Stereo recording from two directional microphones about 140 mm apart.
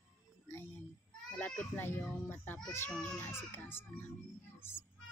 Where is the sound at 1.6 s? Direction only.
15° left (ahead or behind).